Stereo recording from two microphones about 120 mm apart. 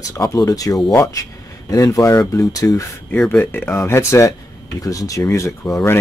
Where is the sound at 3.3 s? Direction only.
15° left (ahead or behind).